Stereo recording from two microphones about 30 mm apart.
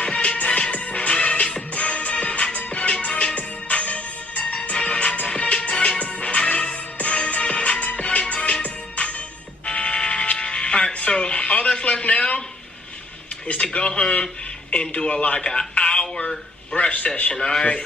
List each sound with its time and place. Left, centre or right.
0.0 s music: left
4.7 s music: left
8.4 s music: left
13.6 s a man's voice: left
13.9 s a man's voice: left
15.7 s a sound: left
16.7 s speech: left
17.4 s a man's voice: centre